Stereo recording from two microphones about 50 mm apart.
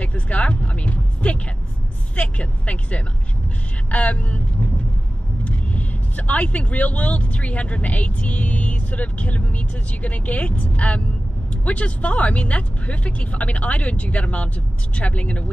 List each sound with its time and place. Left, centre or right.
0.0 s music: left
2.1 s vehicle: left
5.4 s speech: left